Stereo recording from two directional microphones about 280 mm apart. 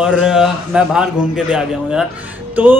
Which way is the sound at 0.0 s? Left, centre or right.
Centre.